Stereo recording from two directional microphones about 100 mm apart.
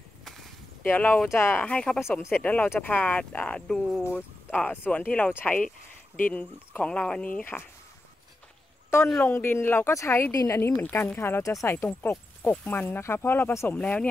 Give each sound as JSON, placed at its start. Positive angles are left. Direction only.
{"t": 0.2, "sound": "whip", "side_deg": 0}
{"t": 0.8, "sound": "speech", "side_deg": 15}
{"t": 1.6, "sound": "speech", "side_deg": 10}
{"t": 2.0, "sound": "speech", "side_deg": 25}
{"t": 4.0, "sound": "speech", "side_deg": 20}
{"t": 9.2, "sound": "speech", "side_deg": 20}
{"t": 10.8, "sound": "speech", "side_deg": 20}
{"t": 13.7, "sound": "speech", "side_deg": 10}